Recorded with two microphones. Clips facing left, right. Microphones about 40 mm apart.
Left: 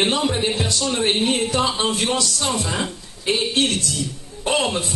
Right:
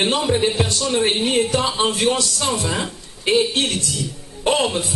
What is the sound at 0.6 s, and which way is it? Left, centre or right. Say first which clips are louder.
A man's voice: right 2 dB; right.